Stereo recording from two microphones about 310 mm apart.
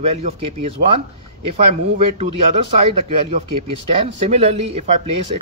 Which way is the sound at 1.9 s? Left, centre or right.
Centre.